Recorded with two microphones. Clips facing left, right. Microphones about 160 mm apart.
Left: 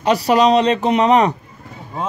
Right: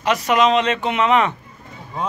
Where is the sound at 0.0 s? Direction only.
35° left (ahead or behind).